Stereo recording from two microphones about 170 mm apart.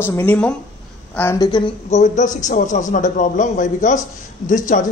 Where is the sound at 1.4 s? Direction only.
30° left (ahead or behind).